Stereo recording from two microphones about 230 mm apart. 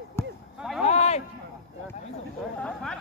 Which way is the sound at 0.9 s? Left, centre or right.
Left.